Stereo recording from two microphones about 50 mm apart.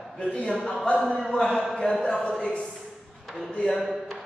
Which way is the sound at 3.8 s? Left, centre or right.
Centre.